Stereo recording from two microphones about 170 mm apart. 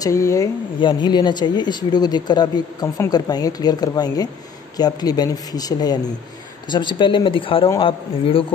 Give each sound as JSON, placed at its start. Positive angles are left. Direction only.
{"t": 0.0, "sound": "a man's voice", "side_deg": 20}